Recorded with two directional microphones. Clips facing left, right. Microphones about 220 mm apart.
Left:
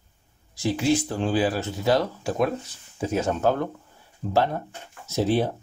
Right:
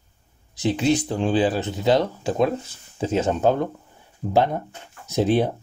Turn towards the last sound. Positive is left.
turn(degrees=-15)  # may be behind; listen again after turning